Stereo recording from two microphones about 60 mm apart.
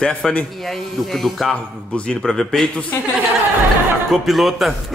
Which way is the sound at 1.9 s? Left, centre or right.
Centre.